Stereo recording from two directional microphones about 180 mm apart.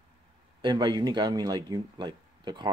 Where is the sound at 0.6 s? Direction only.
25° right (ahead or behind).